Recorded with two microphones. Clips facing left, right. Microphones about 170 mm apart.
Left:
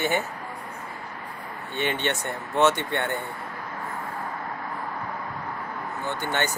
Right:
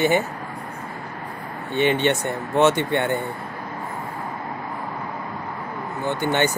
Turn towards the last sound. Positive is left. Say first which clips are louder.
# right 6 dB
turn(degrees=-15)  # may be behind; listen again after turning